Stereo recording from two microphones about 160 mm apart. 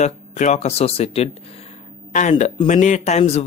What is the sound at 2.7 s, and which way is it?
Speech, 50° left (ahead or behind).